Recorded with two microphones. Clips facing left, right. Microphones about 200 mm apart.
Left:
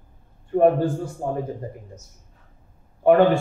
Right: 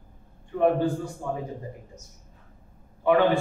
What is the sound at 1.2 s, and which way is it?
Speech, 35° left (ahead or behind).